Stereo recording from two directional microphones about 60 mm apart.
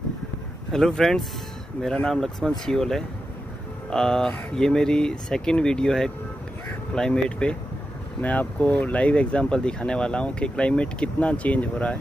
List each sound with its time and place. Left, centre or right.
0.7 s speech: centre